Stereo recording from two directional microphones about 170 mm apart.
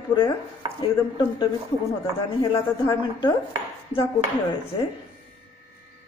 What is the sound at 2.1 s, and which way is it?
A woman's voice, 25° left (ahead or behind).